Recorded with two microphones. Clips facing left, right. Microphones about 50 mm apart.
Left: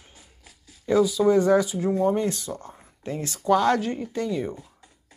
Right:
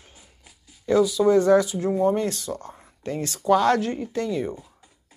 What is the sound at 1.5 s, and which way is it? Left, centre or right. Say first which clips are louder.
Speech: right 2 dB; right.